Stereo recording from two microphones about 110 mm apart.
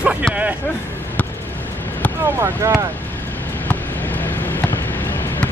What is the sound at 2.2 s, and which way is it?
Speech, 20° right (ahead or behind).